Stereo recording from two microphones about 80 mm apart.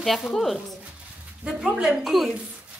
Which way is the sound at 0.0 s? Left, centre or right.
Centre.